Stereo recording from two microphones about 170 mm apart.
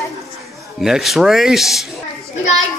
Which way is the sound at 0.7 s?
Centre (ahead or behind).